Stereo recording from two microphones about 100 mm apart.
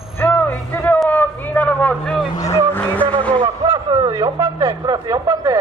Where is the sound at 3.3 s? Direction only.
65° right (ahead or behind).